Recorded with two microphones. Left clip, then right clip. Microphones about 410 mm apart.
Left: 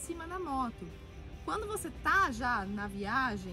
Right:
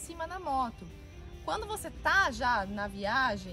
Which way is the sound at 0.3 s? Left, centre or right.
Right.